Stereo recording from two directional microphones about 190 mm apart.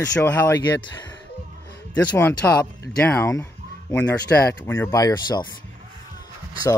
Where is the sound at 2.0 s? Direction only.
10° left (ahead or behind).